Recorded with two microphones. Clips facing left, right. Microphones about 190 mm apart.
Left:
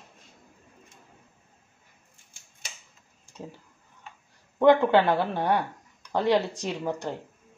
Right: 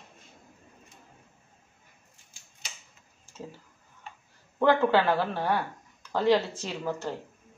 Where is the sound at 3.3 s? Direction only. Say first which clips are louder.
Left 1 dB; 15° left (ahead or behind).